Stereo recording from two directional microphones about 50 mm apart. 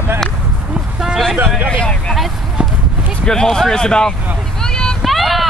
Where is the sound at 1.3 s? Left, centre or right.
Right.